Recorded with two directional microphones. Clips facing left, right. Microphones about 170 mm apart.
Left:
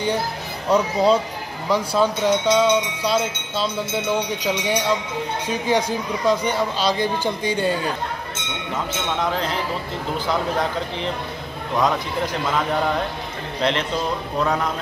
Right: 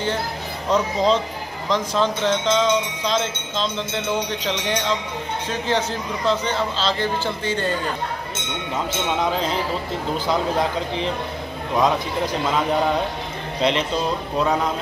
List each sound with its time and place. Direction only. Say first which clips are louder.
0.7 s speech: left 2 dB; 10° left (ahead or behind)
13.6 s a man's voice: right 1 dB; 15° right (ahead or behind)